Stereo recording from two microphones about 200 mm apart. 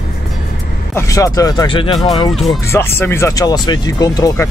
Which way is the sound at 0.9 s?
15° left (ahead or behind).